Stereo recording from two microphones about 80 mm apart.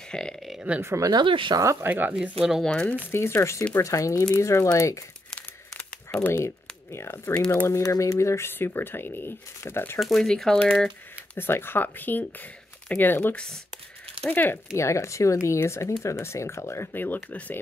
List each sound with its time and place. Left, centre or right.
0.1 s speech: centre
0.7 s speech: right
1.2 s speech: right
1.6 s speech: right
1.9 s speech: right
2.6 s speech: centre
3.1 s speech: left
6.3 s speech: left
7.3 s speech: centre
7.6 s speech: left
9.9 s speech: centre
11.3 s speech: left
14.8 s speech: left